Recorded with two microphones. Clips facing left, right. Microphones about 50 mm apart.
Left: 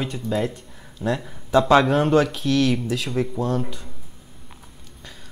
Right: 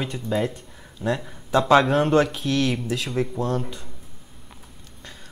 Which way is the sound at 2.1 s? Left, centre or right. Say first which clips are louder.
Left 1 dB; centre.